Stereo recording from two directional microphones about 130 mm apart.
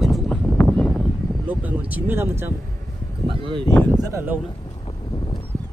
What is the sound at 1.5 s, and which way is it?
Speech, 10° right (ahead or behind).